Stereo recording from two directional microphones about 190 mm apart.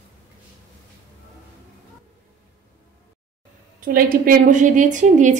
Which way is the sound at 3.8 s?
50° right (ahead or behind).